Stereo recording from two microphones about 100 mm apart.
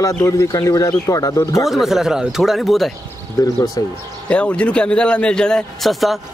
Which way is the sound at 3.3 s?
35° left (ahead or behind).